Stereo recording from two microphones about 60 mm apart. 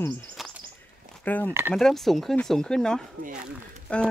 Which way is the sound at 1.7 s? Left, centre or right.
Centre.